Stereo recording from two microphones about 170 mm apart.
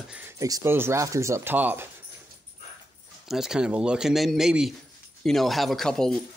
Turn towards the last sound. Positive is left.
turn(degrees=5)  # may be behind; listen again after turning